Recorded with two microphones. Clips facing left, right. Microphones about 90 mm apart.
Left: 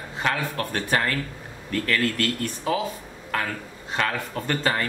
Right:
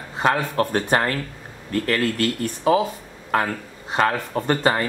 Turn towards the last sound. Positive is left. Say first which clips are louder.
# right 5 dB
turn(degrees=-25)  # may be behind; listen again after turning